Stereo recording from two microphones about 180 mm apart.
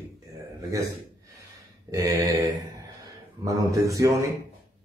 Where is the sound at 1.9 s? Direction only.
20° right (ahead or behind).